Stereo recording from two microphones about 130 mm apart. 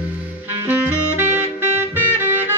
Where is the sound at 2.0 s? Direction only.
15° right (ahead or behind).